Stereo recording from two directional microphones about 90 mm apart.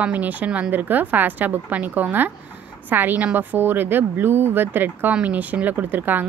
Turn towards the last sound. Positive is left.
turn(degrees=-20)  # may be behind; listen again after turning